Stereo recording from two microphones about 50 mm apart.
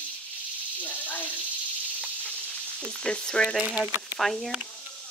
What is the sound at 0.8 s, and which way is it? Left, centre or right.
Speech, left.